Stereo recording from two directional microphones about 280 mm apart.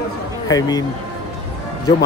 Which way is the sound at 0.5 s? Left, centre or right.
Centre.